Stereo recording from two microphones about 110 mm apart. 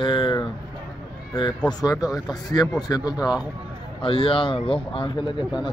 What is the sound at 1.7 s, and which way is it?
Speech, 35° left (ahead or behind).